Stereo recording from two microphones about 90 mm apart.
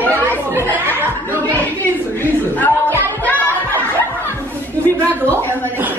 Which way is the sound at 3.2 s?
20° left (ahead or behind).